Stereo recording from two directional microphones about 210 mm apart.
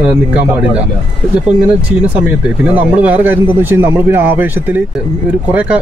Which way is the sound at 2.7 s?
5° right (ahead or behind).